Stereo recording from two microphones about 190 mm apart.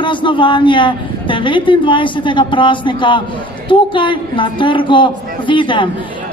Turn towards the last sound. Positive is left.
turn(degrees=25)  # may be behind; listen again after turning